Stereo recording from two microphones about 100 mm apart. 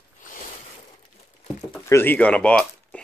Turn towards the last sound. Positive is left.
turn(degrees=10)  # may be behind; listen again after turning